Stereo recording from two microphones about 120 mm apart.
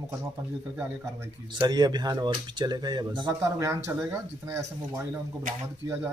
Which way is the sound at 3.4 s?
25° right (ahead or behind).